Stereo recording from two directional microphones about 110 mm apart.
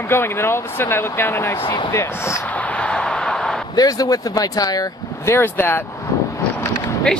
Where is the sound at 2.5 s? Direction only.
15° left (ahead or behind).